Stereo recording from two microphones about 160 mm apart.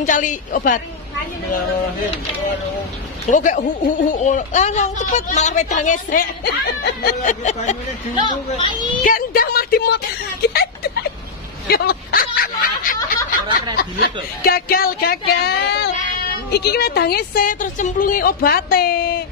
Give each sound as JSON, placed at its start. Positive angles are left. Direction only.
{"t": 0.0, "sound": "a woman's voice", "side_deg": 55}
{"t": 3.3, "sound": "a woman's voice", "side_deg": 50}
{"t": 6.4, "sound": "speech", "side_deg": 80}
{"t": 7.2, "sound": "a woman's voice", "side_deg": 50}
{"t": 9.0, "sound": "a woman's voice", "side_deg": 65}
{"t": 10.5, "sound": "a sound", "side_deg": 75}
{"t": 11.6, "sound": "snicker", "side_deg": 75}
{"t": 13.7, "sound": "a woman's voice", "side_deg": 70}